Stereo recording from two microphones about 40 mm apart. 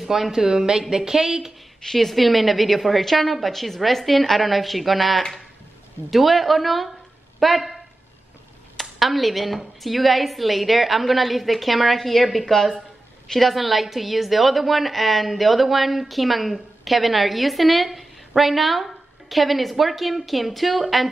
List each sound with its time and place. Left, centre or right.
0.0 s speech: centre
0.3 s speech: centre
1.8 s a woman's voice: centre
9.0 s a woman's voice: centre